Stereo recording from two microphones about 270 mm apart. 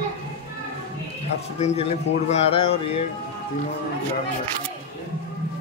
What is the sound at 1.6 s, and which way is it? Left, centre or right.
Music, left.